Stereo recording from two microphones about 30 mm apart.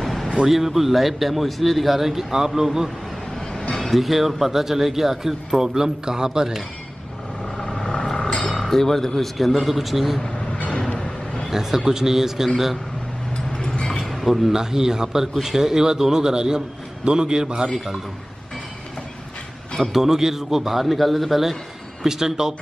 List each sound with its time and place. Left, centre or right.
0.0 s a sound: centre
0.5 s a man's voice: centre
3.9 s a man's voice: centre
7.4 s vehicle: centre
7.8 s vehicle: left
8.5 s speech: centre
9.4 s a man's voice: centre
11.0 s a sound: left
11.5 s a man's voice: centre
14.2 s a man's voice: centre
14.5 s a man's voice: centre
19.8 s a man's voice: centre
22.0 s a man's voice: centre